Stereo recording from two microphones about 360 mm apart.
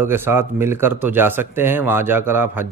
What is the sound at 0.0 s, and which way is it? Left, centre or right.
Speech, centre.